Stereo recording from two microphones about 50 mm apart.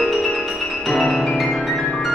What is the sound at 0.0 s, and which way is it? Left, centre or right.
Music, centre.